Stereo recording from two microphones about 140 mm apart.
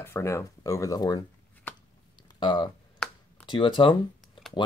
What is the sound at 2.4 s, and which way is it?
Speech, 35° left (ahead or behind).